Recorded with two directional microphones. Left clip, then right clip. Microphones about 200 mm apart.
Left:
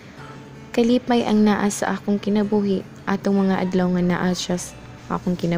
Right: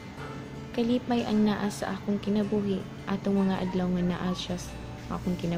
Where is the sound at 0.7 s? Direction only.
40° left (ahead or behind).